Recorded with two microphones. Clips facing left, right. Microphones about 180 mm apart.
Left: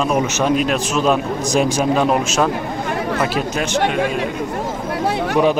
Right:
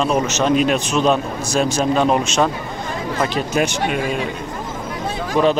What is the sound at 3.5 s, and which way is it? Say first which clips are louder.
Speech: right 2 dB; 15° right (ahead or behind).